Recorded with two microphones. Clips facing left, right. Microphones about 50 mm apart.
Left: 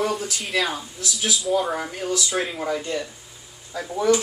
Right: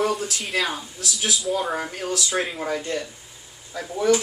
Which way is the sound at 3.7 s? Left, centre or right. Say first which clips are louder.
Even; centre.